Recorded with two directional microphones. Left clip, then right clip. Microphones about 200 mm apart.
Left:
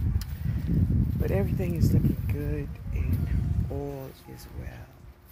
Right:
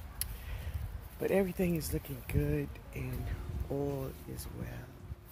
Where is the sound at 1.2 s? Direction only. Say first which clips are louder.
Right 1 dB; centre (ahead or behind).